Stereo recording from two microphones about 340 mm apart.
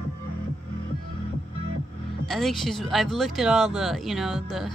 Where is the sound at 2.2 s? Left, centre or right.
Centre.